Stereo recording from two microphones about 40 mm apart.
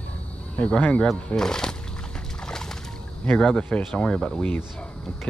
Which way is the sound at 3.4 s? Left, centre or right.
Left.